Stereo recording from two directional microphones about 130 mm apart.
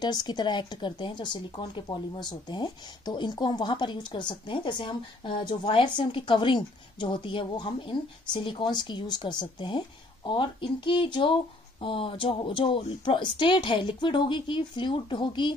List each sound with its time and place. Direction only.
0.0 s speech: 35° left (ahead or behind)